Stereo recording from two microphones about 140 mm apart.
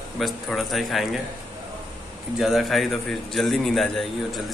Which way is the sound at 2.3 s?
Centre (ahead or behind).